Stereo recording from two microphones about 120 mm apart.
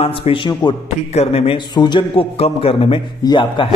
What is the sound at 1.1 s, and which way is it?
A man's voice, 55° left (ahead or behind).